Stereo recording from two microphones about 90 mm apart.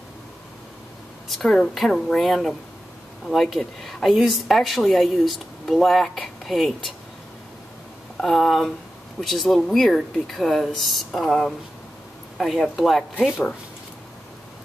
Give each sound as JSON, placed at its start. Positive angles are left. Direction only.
{"t": 1.3, "sound": "a woman's voice", "side_deg": 5}
{"t": 8.2, "sound": "a woman's voice", "side_deg": 0}